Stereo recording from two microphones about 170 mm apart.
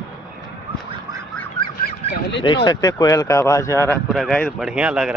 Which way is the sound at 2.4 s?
25° left (ahead or behind).